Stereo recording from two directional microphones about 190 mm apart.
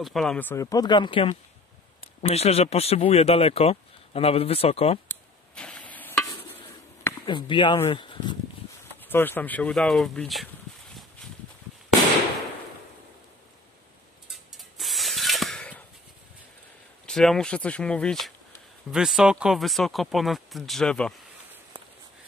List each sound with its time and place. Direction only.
0.0 s speech: centre (ahead or behind); by 5.0 s 30° left (ahead or behind)
5.0 s a sound: 5° left (ahead or behind)
7.2 s speech: 25° left (ahead or behind)
9.0 s speech: 10° left (ahead or behind)
14.3 s music: centre (ahead or behind)
17.0 s speech: 5° left (ahead or behind)